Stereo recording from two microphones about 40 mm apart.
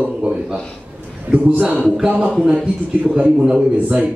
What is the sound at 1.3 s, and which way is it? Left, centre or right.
Speech, right.